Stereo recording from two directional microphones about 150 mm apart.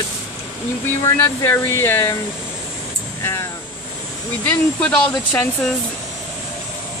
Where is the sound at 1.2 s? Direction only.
15° left (ahead or behind).